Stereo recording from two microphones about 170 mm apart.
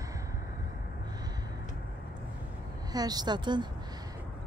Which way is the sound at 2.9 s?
25° right (ahead or behind).